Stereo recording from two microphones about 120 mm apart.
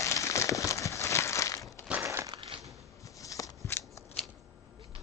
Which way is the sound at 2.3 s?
50° right (ahead or behind).